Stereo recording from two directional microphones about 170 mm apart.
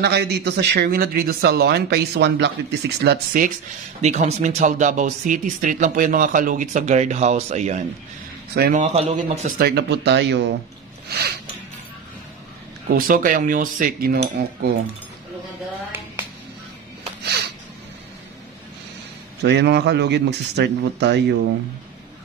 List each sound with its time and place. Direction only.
0.0 s speech: 75° right (ahead or behind)
3.0 s speech: 70° right (ahead or behind)
4.0 s speech: 45° right (ahead or behind)
9.6 s speech: 70° right (ahead or behind); by 10.5 s 90° right
11.1 s a sound: 70° right (ahead or behind)
12.8 s speech: 55° right (ahead or behind)
17.2 s a sound: 70° right (ahead or behind)
19.4 s speech: 85° right